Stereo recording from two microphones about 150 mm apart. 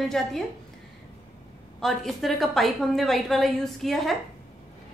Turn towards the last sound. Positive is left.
turn(degrees=0)  # may be behind; listen again after turning